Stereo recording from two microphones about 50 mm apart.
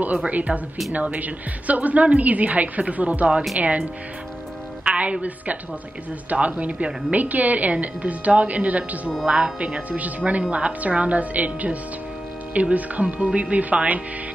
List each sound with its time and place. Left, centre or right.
0.0 s a woman's voice: right
4.8 s music: right
6.3 s a woman's voice: right